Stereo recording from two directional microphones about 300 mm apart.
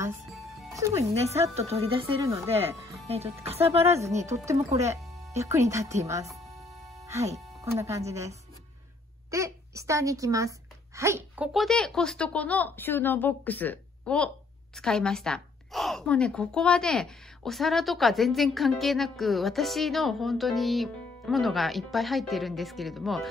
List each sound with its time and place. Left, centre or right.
0.0 s music: centre
0.7 s speech: centre
1.1 s speech: right
3.1 s speech: centre
3.8 s a woman's voice: centre